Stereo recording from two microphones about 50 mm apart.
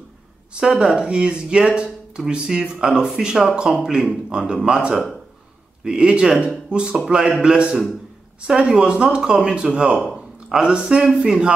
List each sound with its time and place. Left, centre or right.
0.6 s speech: centre